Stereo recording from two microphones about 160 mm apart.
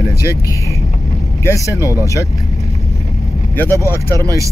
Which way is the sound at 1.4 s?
20° left (ahead or behind).